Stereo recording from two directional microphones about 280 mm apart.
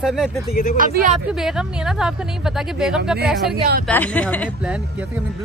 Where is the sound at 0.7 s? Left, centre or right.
Right.